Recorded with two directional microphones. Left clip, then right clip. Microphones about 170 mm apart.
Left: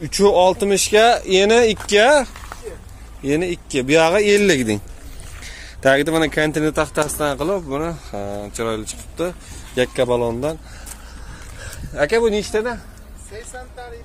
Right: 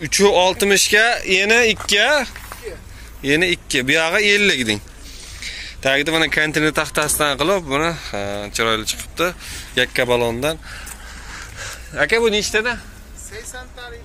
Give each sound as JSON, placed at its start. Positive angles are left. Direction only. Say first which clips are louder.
{"t": 0.0, "sound": "speech", "louder": "even", "side_deg": 20}
{"t": 6.0, "sound": "speech", "louder": "right 1 dB", "side_deg": 25}
{"t": 11.9, "sound": "speech", "louder": "right 1 dB", "side_deg": 10}
{"t": 12.2, "sound": "speech", "louder": "right 1 dB", "side_deg": 30}
{"t": 12.5, "sound": "speech", "louder": "right 2 dB", "side_deg": 20}